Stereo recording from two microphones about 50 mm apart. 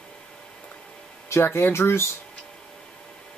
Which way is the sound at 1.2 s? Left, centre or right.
Left.